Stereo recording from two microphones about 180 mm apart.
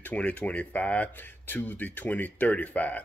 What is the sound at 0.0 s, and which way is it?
Speech, 10° left (ahead or behind).